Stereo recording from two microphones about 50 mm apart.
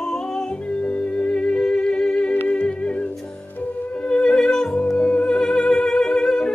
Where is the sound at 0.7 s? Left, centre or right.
Left.